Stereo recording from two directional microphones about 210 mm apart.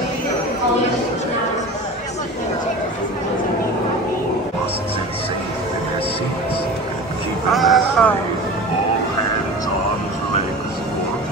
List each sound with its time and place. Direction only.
7.5 s vehicle: centre (ahead or behind)